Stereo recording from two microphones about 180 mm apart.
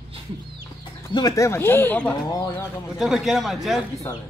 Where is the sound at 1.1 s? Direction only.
20° left (ahead or behind).